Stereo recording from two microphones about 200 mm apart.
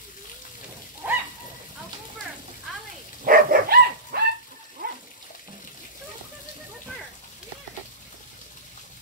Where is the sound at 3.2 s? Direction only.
45° right (ahead or behind).